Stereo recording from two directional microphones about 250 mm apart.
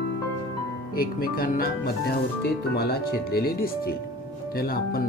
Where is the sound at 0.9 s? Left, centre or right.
Left.